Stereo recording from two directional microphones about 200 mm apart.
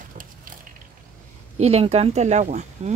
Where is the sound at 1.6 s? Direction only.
30° right (ahead or behind).